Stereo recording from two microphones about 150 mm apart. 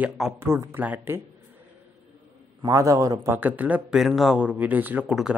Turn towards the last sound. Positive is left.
turn(degrees=-5)  # may be behind; listen again after turning